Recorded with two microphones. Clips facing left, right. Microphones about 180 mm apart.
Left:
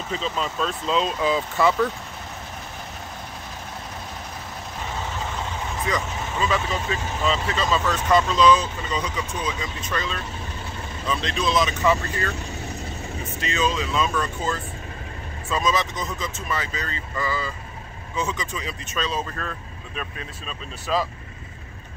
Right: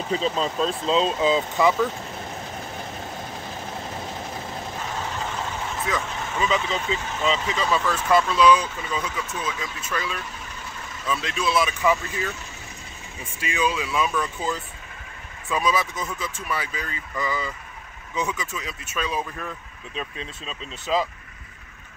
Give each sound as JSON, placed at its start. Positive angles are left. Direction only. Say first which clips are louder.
{"t": 0.1, "sound": "speech", "louder": "right 3 dB", "side_deg": -30}
{"t": 5.9, "sound": "speech", "louder": "left 2 dB", "side_deg": 0}
{"t": 6.4, "sound": "speech", "louder": "even", "side_deg": -20}